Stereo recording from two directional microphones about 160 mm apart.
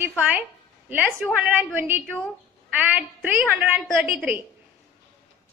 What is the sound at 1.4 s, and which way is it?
A woman's voice, 10° right (ahead or behind).